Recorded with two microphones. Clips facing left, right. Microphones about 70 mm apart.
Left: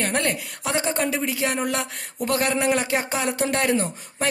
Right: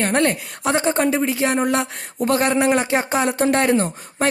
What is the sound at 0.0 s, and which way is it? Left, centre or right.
Speech, right.